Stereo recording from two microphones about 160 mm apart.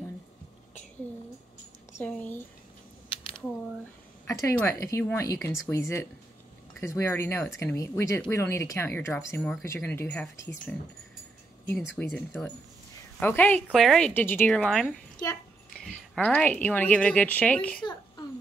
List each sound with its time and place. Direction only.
2.0 s a woman's voice: 10° left (ahead or behind)
4.3 s a woman's voice: 20° left (ahead or behind)